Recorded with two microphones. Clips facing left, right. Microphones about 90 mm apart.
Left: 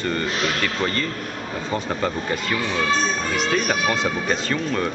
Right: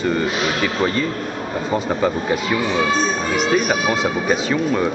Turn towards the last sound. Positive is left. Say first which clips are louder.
# right 5 dB
turn(degrees=-5)  # may be behind; listen again after turning